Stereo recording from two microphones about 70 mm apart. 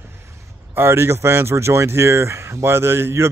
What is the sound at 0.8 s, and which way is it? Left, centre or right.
Speech, right.